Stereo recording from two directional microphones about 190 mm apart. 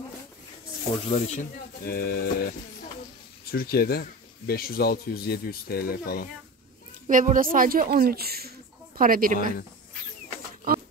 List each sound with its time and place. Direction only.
1.0 s speech: 35° left (ahead or behind)
1.9 s speech: 50° left (ahead or behind)
3.5 s speech: 55° left (ahead or behind)
7.1 s a woman's voice: 45° right (ahead or behind)